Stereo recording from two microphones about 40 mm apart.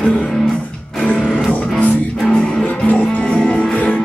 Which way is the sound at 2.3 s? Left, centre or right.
Left.